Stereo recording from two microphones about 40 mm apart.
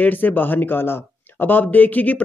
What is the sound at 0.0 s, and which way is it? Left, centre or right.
Speech, left.